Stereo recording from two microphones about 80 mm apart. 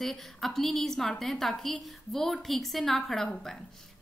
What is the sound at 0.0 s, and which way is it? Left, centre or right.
A woman's voice, centre.